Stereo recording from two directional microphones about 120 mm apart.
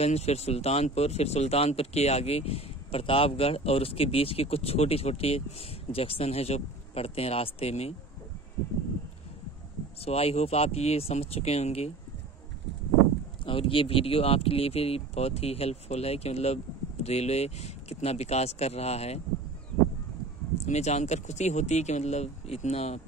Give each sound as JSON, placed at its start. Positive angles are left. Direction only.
{"t": 0.0, "sound": "speech", "side_deg": 65}
{"t": 10.0, "sound": "speech", "side_deg": 55}
{"t": 13.5, "sound": "speech", "side_deg": 50}
{"t": 20.6, "sound": "speech", "side_deg": 70}